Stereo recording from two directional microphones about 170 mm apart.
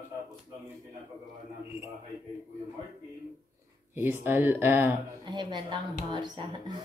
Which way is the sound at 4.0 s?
15° right (ahead or behind).